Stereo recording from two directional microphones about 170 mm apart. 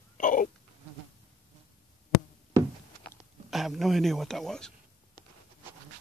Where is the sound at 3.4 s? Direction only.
Centre (ahead or behind).